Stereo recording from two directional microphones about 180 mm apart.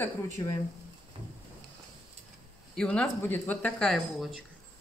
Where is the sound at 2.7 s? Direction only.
5° left (ahead or behind).